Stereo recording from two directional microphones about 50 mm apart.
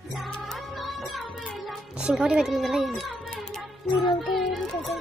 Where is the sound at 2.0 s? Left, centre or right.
Centre.